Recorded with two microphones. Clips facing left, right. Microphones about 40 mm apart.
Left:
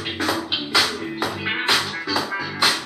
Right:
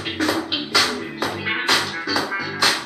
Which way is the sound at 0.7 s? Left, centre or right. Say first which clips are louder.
Even; centre.